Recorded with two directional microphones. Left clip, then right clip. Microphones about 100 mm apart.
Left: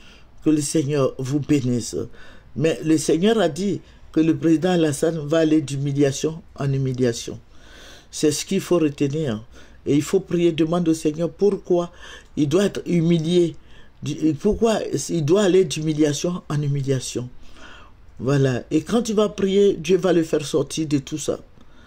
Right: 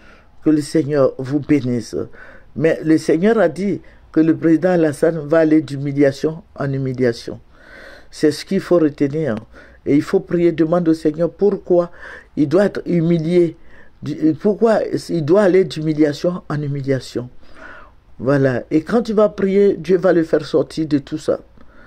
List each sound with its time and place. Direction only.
0.4 s speech: 30° left (ahead or behind)
11.7 s speech: 20° left (ahead or behind)